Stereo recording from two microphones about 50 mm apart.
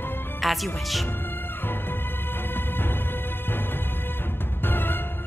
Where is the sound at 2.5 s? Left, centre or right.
Left.